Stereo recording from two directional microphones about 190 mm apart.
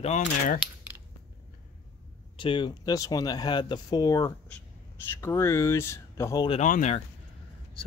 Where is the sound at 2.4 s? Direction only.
25° left (ahead or behind).